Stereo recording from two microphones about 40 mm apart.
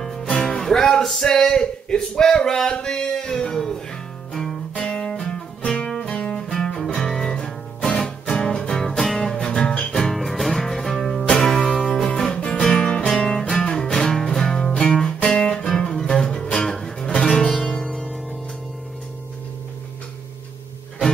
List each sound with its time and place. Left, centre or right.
0.0 s music: centre
1.3 s a sound: centre
4.3 s music: centre
4.7 s music: left
10.1 s music: centre